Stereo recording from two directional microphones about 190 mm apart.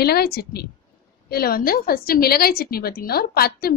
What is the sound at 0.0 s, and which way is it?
A woman's voice, 55° left (ahead or behind).